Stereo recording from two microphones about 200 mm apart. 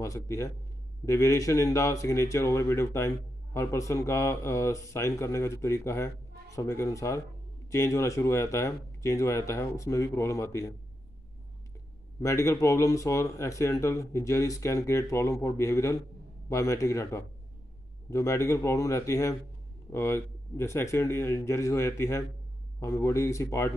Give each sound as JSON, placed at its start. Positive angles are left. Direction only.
{"t": 0.0, "sound": "a man's voice", "side_deg": 15}
{"t": 12.2, "sound": "a man's voice", "side_deg": 15}